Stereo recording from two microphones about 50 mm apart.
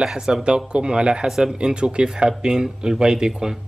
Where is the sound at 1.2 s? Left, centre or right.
Centre.